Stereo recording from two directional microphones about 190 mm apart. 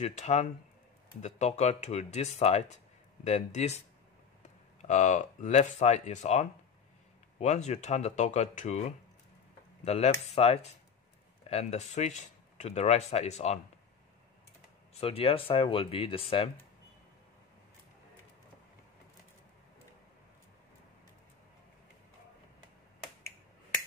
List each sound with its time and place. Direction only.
0.0 s speech: 35° left (ahead or behind)
4.8 s speech: 40° left (ahead or behind)
9.8 s speech: 35° left (ahead or behind)
15.0 s speech: 30° left (ahead or behind)